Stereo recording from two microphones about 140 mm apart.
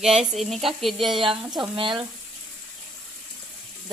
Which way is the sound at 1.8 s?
35° right (ahead or behind).